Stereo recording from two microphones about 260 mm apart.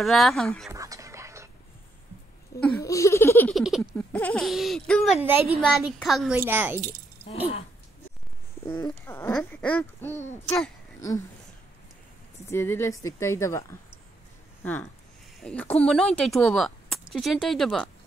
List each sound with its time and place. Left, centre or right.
0.0 s laughter: centre
0.7 s music: centre
2.6 s laughter: centre
5.9 s a woman's voice: centre
8.6 s speech: centre
10.4 s laughter: centre
12.4 s speech: centre
15.4 s laughter: centre